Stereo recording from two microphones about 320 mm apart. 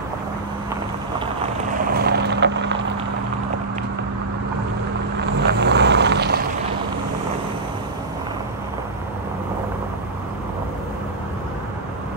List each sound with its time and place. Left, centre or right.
1.2 s vehicle: right
5.2 s vehicle: right